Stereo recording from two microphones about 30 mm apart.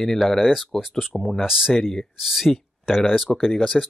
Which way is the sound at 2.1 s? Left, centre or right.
Centre.